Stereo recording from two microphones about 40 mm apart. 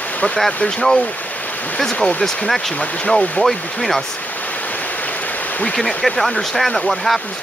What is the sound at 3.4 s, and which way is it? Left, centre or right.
Speech, centre.